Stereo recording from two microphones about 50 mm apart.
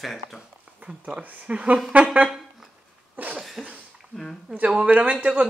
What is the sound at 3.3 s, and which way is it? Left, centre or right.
Cough, centre.